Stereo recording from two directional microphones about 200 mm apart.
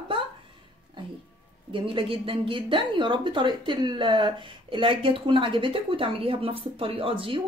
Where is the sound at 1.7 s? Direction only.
25° right (ahead or behind).